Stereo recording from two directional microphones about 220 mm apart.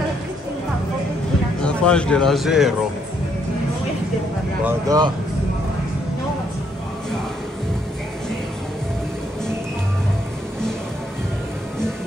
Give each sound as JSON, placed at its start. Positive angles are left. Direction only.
{"t": 1.6, "sound": "speech", "side_deg": 5}
{"t": 4.6, "sound": "speech", "side_deg": -15}